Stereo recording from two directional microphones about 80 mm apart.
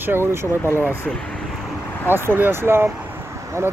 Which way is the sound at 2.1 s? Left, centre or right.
Right.